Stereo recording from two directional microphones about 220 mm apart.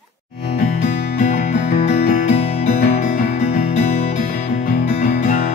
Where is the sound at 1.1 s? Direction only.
35° left (ahead or behind).